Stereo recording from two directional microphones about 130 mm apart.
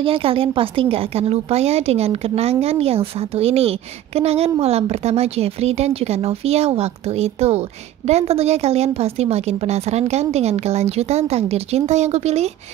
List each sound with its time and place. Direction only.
0.0 s a woman's voice: 45° right (ahead or behind)